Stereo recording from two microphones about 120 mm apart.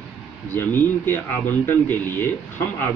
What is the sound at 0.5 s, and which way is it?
A man's voice, 15° left (ahead or behind).